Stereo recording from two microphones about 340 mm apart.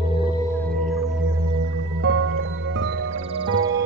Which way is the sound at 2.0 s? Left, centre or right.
Right.